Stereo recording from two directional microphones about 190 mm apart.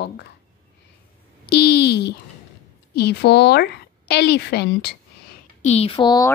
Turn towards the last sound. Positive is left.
turn(degrees=25)  # may be behind; listen again after turning